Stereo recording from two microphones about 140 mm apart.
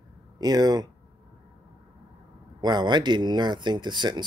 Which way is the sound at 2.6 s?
30° right (ahead or behind).